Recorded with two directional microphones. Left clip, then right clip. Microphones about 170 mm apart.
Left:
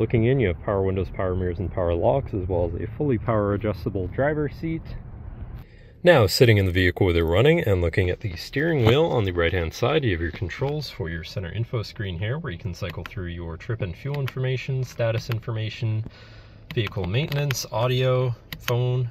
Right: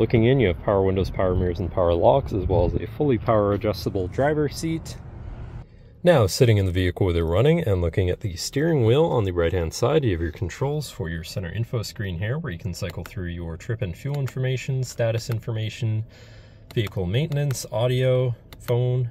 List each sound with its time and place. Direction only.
0.0 s speech: 35° right (ahead or behind); by 4.8 s 20° right (ahead or behind)
6.0 s speech: 5° right (ahead or behind)
8.2 s speech: 25° right (ahead or behind)
17.6 s speech: 35° right (ahead or behind)